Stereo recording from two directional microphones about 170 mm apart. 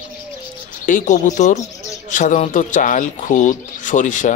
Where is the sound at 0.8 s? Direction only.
50° left (ahead or behind).